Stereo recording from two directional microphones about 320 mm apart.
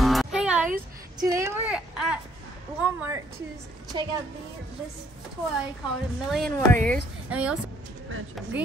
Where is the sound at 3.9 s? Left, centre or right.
Centre.